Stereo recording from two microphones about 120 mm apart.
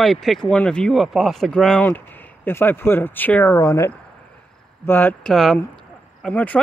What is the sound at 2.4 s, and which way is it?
Speech, 15° left (ahead or behind).